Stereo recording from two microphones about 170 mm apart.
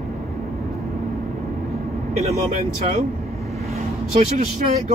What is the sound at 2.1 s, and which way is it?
Speech, 40° right (ahead or behind).